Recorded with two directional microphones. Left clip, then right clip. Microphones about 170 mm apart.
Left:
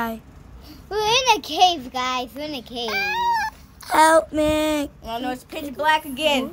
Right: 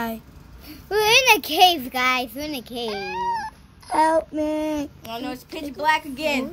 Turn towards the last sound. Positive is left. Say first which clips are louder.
# left 3 dB
turn(degrees=35)  # may be behind; listen again after turning